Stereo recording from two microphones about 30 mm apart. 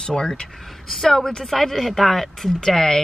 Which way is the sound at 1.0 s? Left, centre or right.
Centre.